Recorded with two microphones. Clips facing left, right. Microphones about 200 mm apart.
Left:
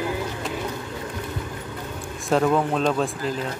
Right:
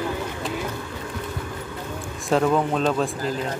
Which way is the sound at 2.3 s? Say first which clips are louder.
Even; centre (ahead or behind).